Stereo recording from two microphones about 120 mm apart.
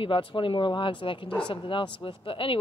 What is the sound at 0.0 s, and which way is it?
A woman's voice, 50° left (ahead or behind).